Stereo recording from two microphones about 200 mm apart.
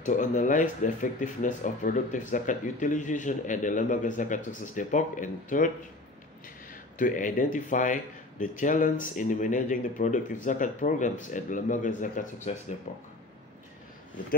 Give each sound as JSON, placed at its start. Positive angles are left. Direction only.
{"t": 0.0, "sound": "speech", "side_deg": 40}
{"t": 6.7, "sound": "speech", "side_deg": 40}